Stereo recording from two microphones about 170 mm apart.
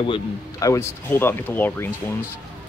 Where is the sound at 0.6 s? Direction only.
15° left (ahead or behind).